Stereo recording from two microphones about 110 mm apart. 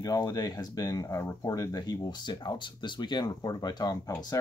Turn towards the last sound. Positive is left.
turn(degrees=35)  # may be behind; listen again after turning